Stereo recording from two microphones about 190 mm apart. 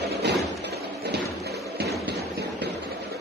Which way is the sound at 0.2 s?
60° right (ahead or behind).